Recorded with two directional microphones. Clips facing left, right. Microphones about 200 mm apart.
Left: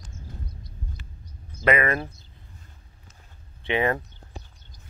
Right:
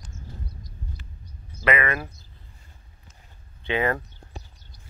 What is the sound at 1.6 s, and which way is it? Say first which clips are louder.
Speech: left 2 dB; 40° left (ahead or behind).